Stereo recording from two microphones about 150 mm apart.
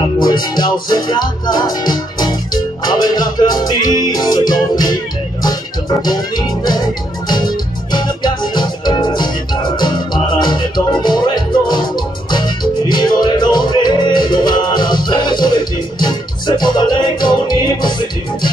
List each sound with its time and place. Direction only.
0.2 s music: 30° left (ahead or behind)